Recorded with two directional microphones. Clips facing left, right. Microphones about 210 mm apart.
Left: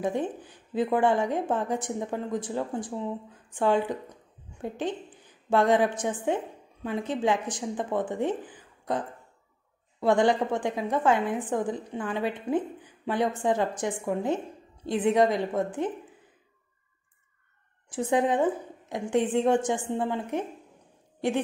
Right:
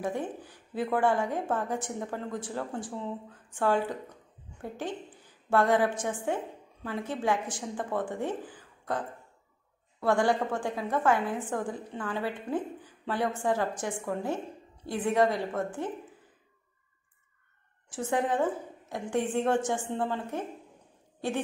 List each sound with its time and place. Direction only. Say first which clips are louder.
0.0 s a woman's voice: left 4 dB; 20° left (ahead or behind)
17.8 s a woman's voice: left 4 dB; 15° left (ahead or behind)